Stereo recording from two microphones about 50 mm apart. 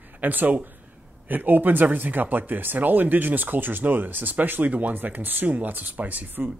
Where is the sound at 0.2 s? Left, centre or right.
Right.